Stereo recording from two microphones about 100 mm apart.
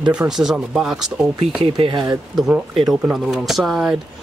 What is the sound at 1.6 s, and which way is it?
Speech, 55° right (ahead or behind).